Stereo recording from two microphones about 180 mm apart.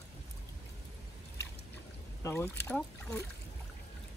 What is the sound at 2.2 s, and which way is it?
Speech, 15° left (ahead or behind).